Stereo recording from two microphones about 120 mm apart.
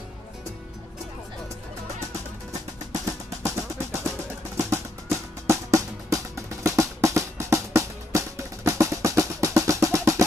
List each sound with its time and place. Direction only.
2.9 s music: 25° right (ahead or behind)